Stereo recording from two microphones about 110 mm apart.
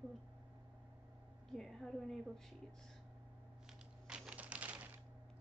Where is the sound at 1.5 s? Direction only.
Centre (ahead or behind).